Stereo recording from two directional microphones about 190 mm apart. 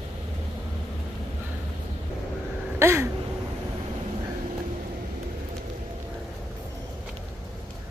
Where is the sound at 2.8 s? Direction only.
15° right (ahead or behind).